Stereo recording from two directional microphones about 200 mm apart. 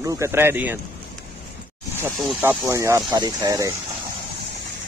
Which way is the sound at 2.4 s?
10° right (ahead or behind).